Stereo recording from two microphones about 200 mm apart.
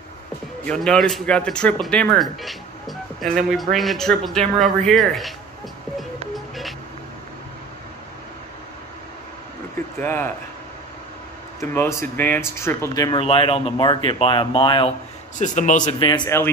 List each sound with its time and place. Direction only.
0.7 s speech: 5° left (ahead or behind)
6.3 s music: centre (ahead or behind)
9.9 s speech: 10° left (ahead or behind)
11.6 s speech: 10° left (ahead or behind)
15.3 s a man's voice: 40° left (ahead or behind)
15.8 s speech: 25° left (ahead or behind)